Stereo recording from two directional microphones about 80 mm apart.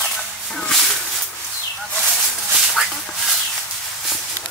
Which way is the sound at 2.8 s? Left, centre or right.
Centre.